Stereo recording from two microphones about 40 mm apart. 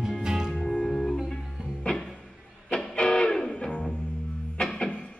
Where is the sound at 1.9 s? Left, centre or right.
Left.